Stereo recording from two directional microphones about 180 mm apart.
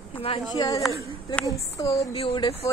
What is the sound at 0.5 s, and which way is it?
Speech, 20° left (ahead or behind).